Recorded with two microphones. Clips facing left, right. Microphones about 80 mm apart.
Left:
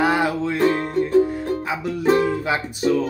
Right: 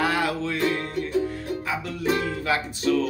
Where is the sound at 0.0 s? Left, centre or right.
Left.